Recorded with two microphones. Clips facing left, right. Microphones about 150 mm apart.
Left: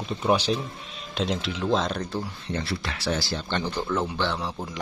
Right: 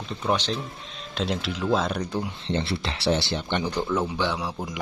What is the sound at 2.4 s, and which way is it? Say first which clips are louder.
Speech: right 3 dB; 25° right (ahead or behind).